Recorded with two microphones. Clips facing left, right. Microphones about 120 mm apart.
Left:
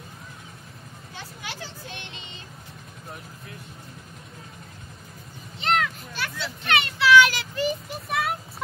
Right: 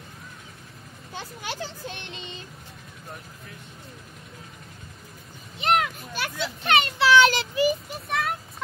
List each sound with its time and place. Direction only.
1.1 s a child's voice: 35° right (ahead or behind)
5.6 s children playing: 15° right (ahead or behind)
6.8 s children playing: 30° right (ahead or behind)
7.5 s a child's voice: 5° right (ahead or behind)
8.1 s vehicle: 5° left (ahead or behind)